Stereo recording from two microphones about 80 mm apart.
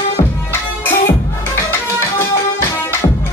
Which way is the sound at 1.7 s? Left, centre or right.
Left.